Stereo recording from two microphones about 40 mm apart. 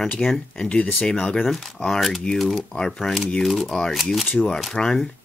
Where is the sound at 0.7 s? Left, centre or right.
Left.